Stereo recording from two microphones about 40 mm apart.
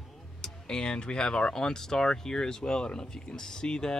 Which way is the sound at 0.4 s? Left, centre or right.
Left.